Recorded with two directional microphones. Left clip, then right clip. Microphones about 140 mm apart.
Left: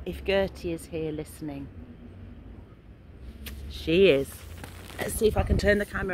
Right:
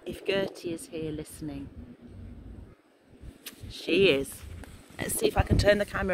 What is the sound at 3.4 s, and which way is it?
Speech, 35° right (ahead or behind).